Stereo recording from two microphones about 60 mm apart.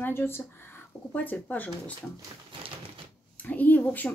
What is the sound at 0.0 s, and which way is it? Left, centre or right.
Speech, left.